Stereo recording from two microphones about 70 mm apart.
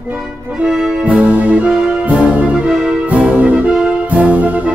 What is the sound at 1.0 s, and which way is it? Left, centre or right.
Music, centre.